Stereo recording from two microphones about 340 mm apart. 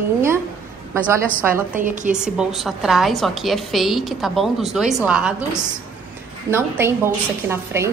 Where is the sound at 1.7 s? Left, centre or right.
Right.